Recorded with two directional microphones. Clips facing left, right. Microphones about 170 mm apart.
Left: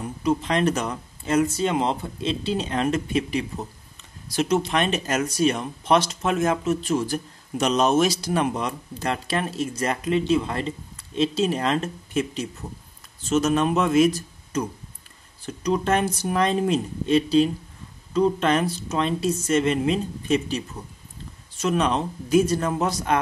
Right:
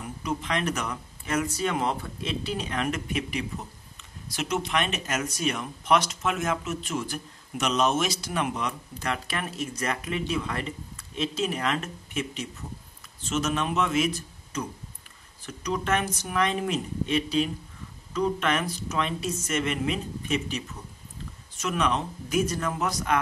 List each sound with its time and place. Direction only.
0.2 s speech: 30° left (ahead or behind)